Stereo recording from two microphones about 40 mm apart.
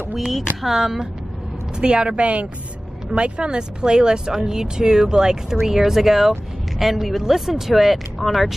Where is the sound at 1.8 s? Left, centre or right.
Right.